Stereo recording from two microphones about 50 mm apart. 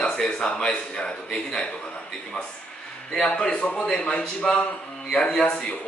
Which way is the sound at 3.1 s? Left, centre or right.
Left.